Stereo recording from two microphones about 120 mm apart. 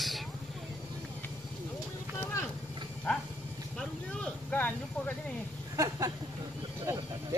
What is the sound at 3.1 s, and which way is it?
Dog, 10° left (ahead or behind).